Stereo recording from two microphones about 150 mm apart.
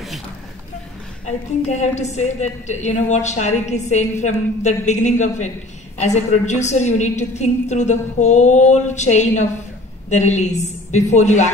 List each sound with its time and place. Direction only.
1.2 s a woman's voice: 50° left (ahead or behind)